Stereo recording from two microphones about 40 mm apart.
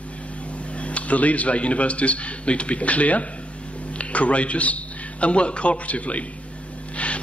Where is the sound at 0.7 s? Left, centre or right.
Left.